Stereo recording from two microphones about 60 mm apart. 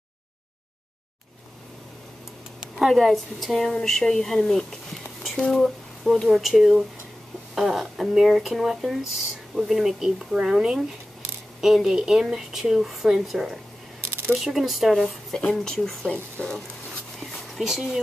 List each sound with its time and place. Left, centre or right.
2.6 s speech: centre
15.3 s speech: centre
17.2 s a sound: centre